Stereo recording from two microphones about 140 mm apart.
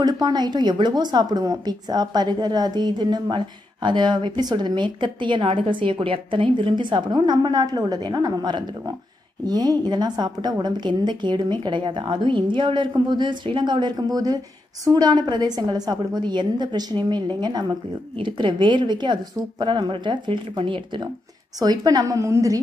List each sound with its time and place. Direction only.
0.0 s a woman's voice: 30° right (ahead or behind)